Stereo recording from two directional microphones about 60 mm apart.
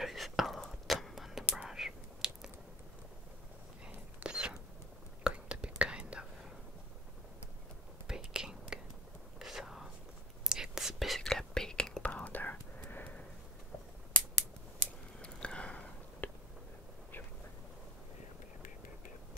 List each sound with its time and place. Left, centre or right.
0.0 s whispering: centre
3.8 s whispering: centre
8.1 s whispering: centre
12.0 s whispering: left
15.1 s a sound: centre